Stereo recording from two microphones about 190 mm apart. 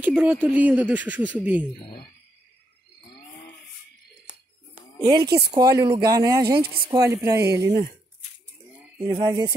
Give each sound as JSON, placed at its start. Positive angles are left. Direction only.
{"t": 0.1, "sound": "speech", "side_deg": -5}
{"t": 5.0, "sound": "speech", "side_deg": -20}
{"t": 6.4, "sound": "speech", "side_deg": -55}
{"t": 6.9, "sound": "speech", "side_deg": -20}
{"t": 9.0, "sound": "speech", "side_deg": -20}